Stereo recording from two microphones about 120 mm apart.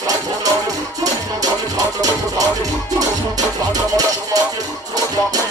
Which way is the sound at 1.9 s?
30° right (ahead or behind).